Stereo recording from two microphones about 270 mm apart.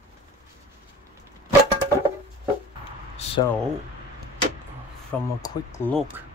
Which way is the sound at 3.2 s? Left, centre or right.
Left.